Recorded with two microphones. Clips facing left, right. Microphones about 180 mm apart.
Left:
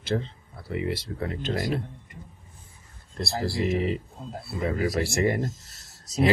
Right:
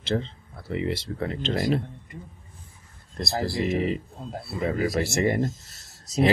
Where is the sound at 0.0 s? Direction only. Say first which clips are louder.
Right 1 dB; 25° right (ahead or behind).